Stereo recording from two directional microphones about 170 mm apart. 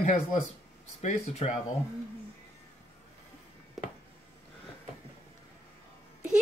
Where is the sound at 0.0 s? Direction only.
40° left (ahead or behind).